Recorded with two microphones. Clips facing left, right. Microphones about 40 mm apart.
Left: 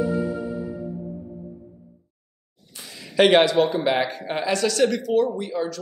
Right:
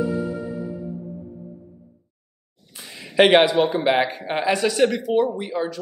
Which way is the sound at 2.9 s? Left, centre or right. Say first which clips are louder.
Right 2 dB; centre.